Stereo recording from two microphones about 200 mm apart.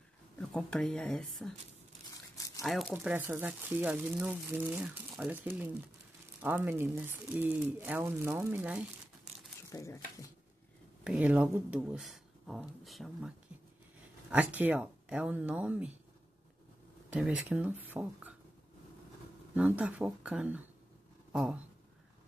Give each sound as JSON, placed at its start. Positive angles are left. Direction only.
{"t": 0.4, "sound": "speech", "side_deg": 5}
{"t": 2.3, "sound": "a sound", "side_deg": 15}
{"t": 2.6, "sound": "speech", "side_deg": 0}
{"t": 9.7, "sound": "speech", "side_deg": 15}
{"t": 11.1, "sound": "speech", "side_deg": -10}
{"t": 14.3, "sound": "speech", "side_deg": -10}
{"t": 17.1, "sound": "speech", "side_deg": -5}
{"t": 19.5, "sound": "speech", "side_deg": -5}